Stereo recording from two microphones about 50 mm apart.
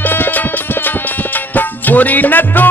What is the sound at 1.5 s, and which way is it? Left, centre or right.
Music, left.